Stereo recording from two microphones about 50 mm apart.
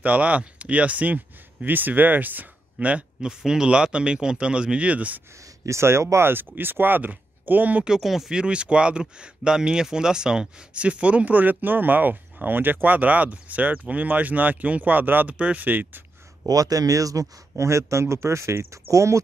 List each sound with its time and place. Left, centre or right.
0.0 s speech: right
3.2 s speech: centre; by 5.2 s right
5.7 s speech: right
6.3 s speech: right
8.0 s speech: centre
8.3 s speech: centre; by 15.2 s right
15.2 s speech: right
17.1 s speech: right